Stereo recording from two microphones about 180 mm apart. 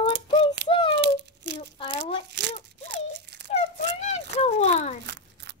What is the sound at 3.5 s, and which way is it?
A child's voice, 35° left (ahead or behind).